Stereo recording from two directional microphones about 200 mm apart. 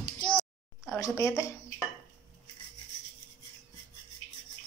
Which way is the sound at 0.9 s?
15° left (ahead or behind).